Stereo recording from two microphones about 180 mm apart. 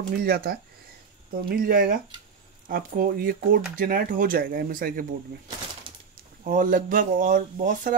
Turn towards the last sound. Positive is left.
turn(degrees=-50)  # may be behind; listen again after turning